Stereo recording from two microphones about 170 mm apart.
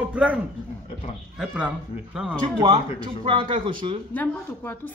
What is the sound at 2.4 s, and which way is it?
Speech, 30° right (ahead or behind).